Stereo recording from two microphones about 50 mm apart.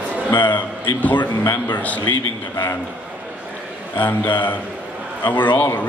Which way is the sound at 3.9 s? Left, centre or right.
Left.